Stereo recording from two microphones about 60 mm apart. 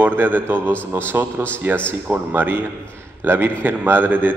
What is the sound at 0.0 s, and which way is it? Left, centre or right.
A man's voice, right.